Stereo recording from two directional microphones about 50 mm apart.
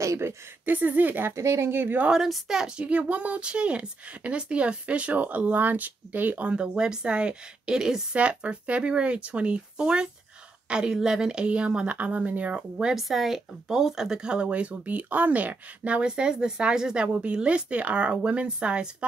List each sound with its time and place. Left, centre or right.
0.0 s a sound: right
0.7 s speech: right
1.3 s speech: right
1.7 s a woman's voice: right
2.2 s speech: centre
2.8 s speech: right
6.5 s speech: centre
12.5 s speech: centre
12.9 s speech: centre; by 19.0 s right